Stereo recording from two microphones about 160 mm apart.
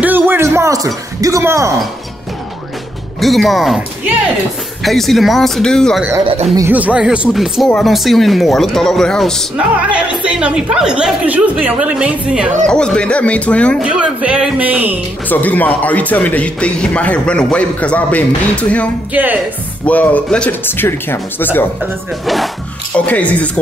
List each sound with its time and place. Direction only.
0.0 s a sound: 10° right (ahead or behind)
3.2 s speech: centre (ahead or behind)
6.7 s speech: 10° right (ahead or behind)
9.6 s a woman's voice: 10° right (ahead or behind)
12.6 s speech: 5° left (ahead or behind)
13.8 s a woman's voice: 5° right (ahead or behind)
15.2 s speech: 10° left (ahead or behind)
19.1 s a woman's voice: 10° right (ahead or behind)
19.9 s speech: 10° left (ahead or behind)
22.2 s speech: centre (ahead or behind)